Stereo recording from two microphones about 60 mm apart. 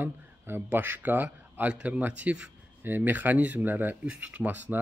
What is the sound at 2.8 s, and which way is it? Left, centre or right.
Speech, right.